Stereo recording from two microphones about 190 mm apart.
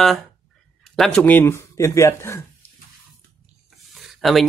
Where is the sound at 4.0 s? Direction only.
Centre (ahead or behind).